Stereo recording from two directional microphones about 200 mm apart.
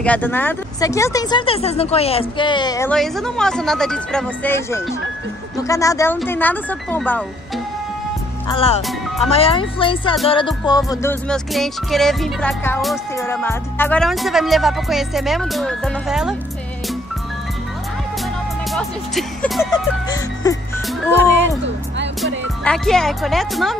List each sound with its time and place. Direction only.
0.0 s speech: 10° left (ahead or behind)
2.9 s speech: centre (ahead or behind)
5.6 s music: 15° left (ahead or behind)
8.5 s speech: 30° left (ahead or behind)
10.2 s music: 25° left (ahead or behind); by 12.8 s 10° left (ahead or behind)
13.1 s speech: 15° left (ahead or behind); by 16.3 s 5° right (ahead or behind)
18.7 s speech: centre (ahead or behind)
19.7 s speech: 20° left (ahead or behind)
22.2 s speech: 5° left (ahead or behind)